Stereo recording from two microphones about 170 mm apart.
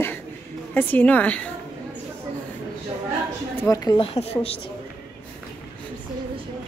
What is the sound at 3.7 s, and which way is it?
Speech, 20° left (ahead or behind).